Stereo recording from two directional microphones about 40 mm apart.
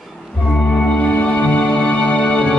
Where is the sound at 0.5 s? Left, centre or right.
Left.